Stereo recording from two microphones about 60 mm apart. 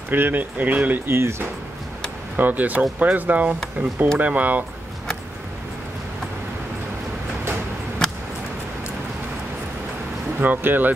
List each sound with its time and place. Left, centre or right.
0.1 s speech: right
1.0 s speech: right
2.3 s speech: right
8.0 s a sound: centre
10.4 s speech: right